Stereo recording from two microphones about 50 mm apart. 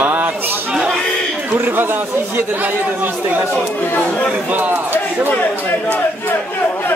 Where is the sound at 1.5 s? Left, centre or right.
Right.